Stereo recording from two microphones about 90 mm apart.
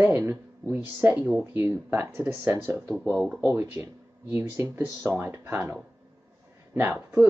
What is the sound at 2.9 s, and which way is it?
Speech, centre (ahead or behind).